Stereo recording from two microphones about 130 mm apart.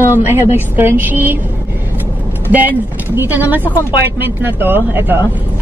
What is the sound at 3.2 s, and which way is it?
A woman's voice, 15° right (ahead or behind).